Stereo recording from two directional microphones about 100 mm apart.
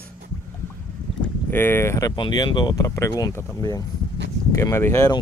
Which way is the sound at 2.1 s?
50° left (ahead or behind).